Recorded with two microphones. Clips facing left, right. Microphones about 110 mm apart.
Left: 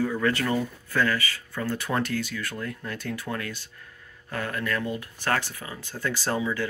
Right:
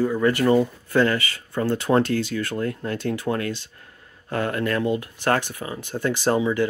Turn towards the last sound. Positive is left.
turn(degrees=-20)  # may be behind; listen again after turning